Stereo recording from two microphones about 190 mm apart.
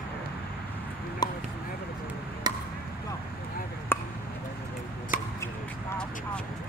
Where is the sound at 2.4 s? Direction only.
20° right (ahead or behind).